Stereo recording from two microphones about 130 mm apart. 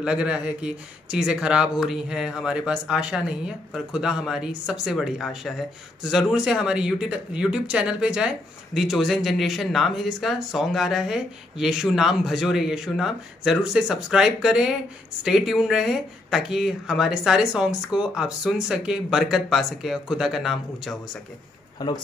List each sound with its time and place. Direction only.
0.0 s speech: 10° right (ahead or behind)
21.8 s a man's voice: 30° left (ahead or behind)